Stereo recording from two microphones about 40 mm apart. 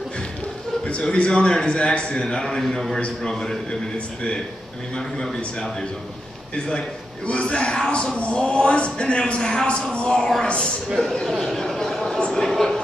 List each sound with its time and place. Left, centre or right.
0.8 s a man's voice: left; by 3.5 s centre
4.9 s a man's voice: centre
6.5 s a man's voice: left
9.4 s a man's voice: centre
11.2 s a sound: centre
12.3 s a man's voice: centre